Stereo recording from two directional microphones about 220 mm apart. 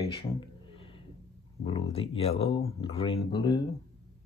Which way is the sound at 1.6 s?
25° left (ahead or behind).